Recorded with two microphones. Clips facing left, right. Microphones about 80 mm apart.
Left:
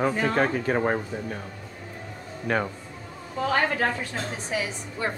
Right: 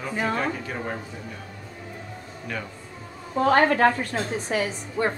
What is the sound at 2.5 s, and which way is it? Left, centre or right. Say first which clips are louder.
Speech: left 8 dB; left.